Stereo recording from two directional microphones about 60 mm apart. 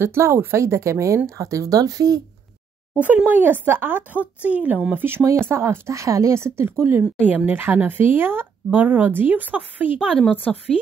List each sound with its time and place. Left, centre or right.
0.0 s speech: right
3.0 s speech: right
4.4 s a woman's voice: right
4.9 s speech: right
7.2 s a woman's voice: right
10.3 s a woman's voice: left